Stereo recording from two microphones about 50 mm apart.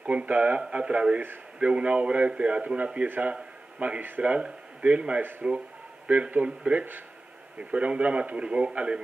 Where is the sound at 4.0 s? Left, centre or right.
Right.